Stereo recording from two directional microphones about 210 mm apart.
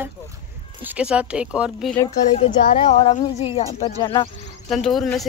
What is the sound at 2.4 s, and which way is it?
Speech, 30° left (ahead or behind).